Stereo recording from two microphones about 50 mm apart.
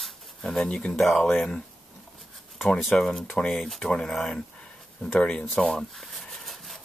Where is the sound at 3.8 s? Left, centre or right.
Left.